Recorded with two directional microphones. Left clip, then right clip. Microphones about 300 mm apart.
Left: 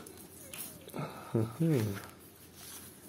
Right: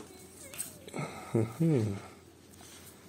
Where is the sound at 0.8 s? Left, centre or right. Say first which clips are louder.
Right 2 dB; centre.